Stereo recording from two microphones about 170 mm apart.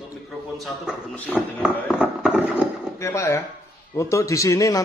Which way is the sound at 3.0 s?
15° left (ahead or behind).